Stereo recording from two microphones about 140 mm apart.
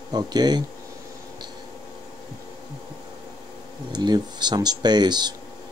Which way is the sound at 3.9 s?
30° right (ahead or behind).